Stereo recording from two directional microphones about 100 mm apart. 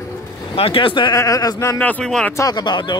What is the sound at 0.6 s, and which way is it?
Speech, 60° left (ahead or behind).